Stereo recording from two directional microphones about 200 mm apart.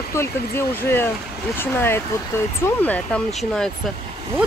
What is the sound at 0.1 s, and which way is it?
Speech, 10° left (ahead or behind).